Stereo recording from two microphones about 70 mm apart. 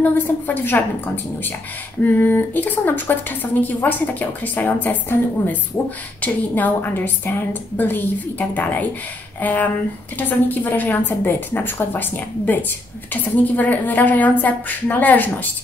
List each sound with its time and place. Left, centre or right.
0.0 s a woman's voice: left